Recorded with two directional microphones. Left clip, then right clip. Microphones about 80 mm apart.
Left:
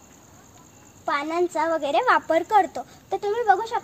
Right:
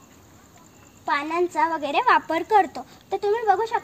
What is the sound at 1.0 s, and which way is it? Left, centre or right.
A child's voice, left.